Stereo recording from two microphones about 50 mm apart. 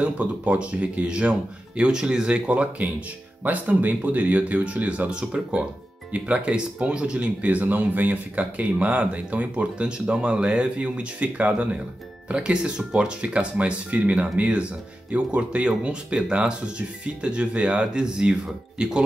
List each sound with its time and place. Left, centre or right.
0.0 s speech: right